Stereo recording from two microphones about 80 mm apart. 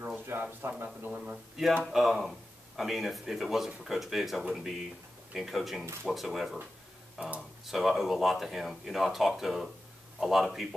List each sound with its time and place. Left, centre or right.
0.0 s a sound: right
0.8 s speech: centre
1.9 s speech: centre